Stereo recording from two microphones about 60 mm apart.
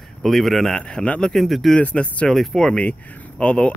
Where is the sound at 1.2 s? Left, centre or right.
Centre.